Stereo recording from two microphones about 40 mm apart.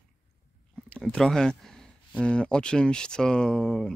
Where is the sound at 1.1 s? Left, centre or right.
Centre.